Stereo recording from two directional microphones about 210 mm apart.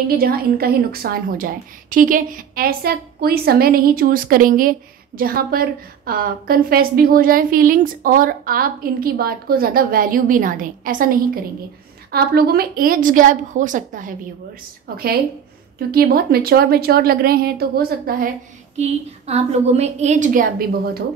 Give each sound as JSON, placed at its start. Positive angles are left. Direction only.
{"t": 0.1, "sound": "a woman's voice", "side_deg": -45}
{"t": 18.8, "sound": "a woman's voice", "side_deg": -30}